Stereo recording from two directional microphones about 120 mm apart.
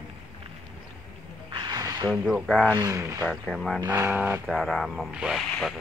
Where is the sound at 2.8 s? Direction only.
25° right (ahead or behind).